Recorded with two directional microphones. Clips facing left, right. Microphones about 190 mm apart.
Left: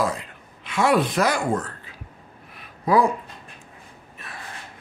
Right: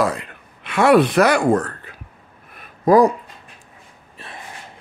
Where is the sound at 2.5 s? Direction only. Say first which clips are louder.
Right 6 dB; 50° right (ahead or behind).